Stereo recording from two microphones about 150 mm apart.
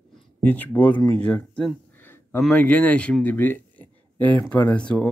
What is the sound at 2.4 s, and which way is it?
Speech, 10° left (ahead or behind).